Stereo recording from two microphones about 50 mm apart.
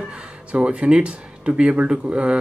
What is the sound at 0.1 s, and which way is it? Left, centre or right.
Speech, right.